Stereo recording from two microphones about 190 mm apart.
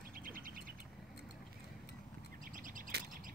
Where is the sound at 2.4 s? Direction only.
45° right (ahead or behind).